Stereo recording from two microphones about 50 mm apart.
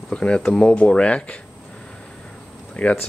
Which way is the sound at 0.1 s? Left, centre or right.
Centre.